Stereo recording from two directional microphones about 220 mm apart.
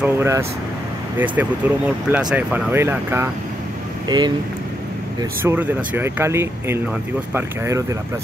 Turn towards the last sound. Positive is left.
turn(degrees=-10)  # may be behind; listen again after turning